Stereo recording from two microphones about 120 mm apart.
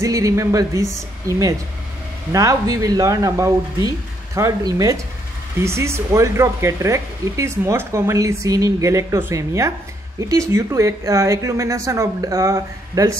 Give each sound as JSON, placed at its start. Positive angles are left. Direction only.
{"t": 0.0, "sound": "speech", "side_deg": -25}